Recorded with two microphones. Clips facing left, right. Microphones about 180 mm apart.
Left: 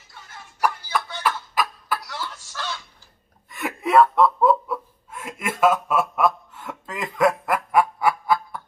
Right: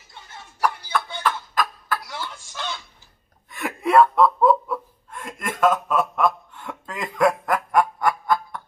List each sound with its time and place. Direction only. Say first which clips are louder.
1.2 s a sound: left 1 dB; 10° left (ahead or behind)
2.0 s fowl: even; 20° right (ahead or behind)
3.4 s laughter: right 1 dB; centre (ahead or behind)